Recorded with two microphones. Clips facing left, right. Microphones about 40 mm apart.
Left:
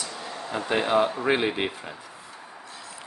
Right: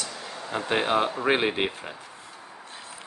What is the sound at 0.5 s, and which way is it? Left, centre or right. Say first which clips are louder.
Speech: left 1 dB; right.